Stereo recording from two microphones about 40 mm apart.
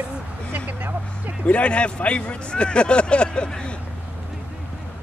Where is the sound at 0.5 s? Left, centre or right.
Right.